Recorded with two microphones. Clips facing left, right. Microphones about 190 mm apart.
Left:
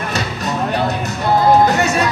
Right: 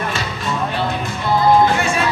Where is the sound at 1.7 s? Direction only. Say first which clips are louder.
Left 2 dB; 40° left (ahead or behind).